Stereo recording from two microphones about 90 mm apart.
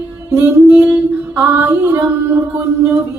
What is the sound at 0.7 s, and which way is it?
Female singing, 20° right (ahead or behind).